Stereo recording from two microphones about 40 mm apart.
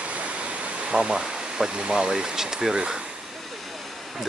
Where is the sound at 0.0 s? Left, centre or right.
Right.